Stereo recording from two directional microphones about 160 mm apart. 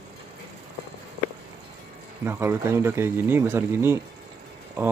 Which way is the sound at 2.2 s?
15° right (ahead or behind).